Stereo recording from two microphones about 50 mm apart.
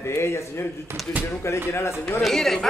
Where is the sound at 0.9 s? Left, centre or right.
Right.